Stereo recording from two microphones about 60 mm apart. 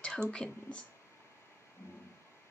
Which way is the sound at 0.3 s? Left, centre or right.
Centre.